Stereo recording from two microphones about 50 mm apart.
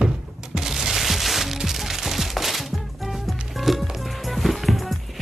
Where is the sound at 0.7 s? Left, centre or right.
Centre.